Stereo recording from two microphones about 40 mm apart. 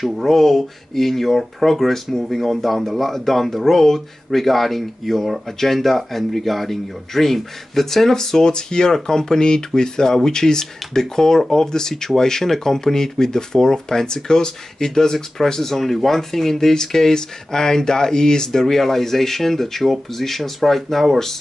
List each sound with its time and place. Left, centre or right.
0.0 s speech: centre